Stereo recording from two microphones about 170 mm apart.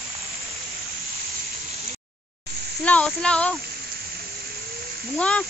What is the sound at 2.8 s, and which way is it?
Speech, 5° left (ahead or behind).